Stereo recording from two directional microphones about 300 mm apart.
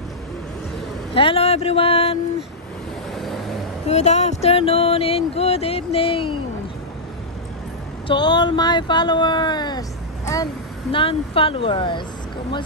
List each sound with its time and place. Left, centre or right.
1.1 s speech: centre
3.2 s vehicle: centre
3.8 s speech: left
8.1 s speech: centre